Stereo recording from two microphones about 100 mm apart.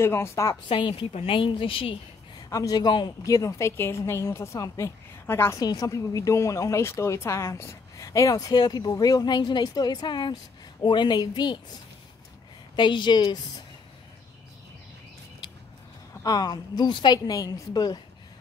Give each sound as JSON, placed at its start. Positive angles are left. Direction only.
{"t": 0.0, "sound": "a woman's voice", "side_deg": 25}
{"t": 0.7, "sound": "a woman's voice", "side_deg": 55}
{"t": 2.5, "sound": "a woman's voice", "side_deg": 40}
{"t": 3.3, "sound": "a woman's voice", "side_deg": 30}
{"t": 5.6, "sound": "a woman's voice", "side_deg": 35}
{"t": 12.7, "sound": "a woman's voice", "side_deg": 50}
{"t": 16.2, "sound": "speech", "side_deg": 40}